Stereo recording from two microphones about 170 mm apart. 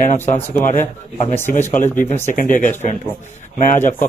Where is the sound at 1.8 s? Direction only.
45° left (ahead or behind).